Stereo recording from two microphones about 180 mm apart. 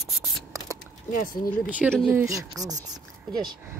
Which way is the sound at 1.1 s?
50° left (ahead or behind).